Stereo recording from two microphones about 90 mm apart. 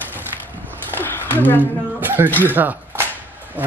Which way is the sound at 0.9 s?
25° left (ahead or behind).